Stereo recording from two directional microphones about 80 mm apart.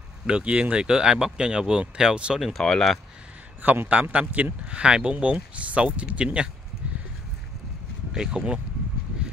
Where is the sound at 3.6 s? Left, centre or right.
Right.